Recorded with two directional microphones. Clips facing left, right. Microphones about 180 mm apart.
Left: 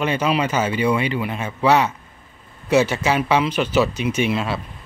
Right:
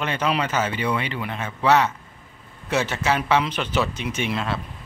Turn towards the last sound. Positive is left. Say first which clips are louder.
# left 5 dB
turn(degrees=10)  # may be behind; listen again after turning